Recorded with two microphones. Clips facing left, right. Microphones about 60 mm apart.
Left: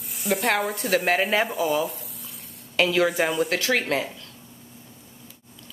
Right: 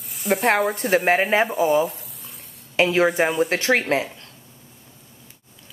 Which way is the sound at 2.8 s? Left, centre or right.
Right.